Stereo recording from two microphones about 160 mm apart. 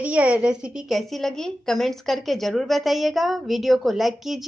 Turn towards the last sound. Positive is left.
turn(degrees=0)  # may be behind; listen again after turning